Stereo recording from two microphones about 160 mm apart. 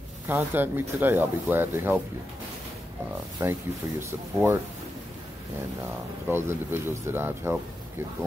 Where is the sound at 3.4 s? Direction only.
15° right (ahead or behind).